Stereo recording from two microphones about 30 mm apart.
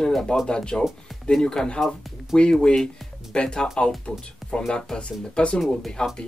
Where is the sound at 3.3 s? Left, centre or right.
Left.